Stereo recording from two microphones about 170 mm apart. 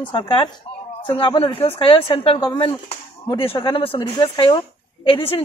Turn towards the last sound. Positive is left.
turn(degrees=30)  # may be behind; listen again after turning